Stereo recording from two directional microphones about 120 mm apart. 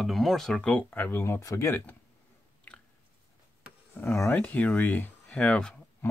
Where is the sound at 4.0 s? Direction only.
20° left (ahead or behind).